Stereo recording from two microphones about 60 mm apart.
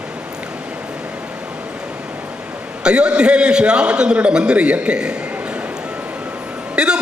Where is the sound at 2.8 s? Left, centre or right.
Centre.